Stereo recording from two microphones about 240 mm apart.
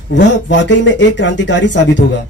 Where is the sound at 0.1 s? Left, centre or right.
Left.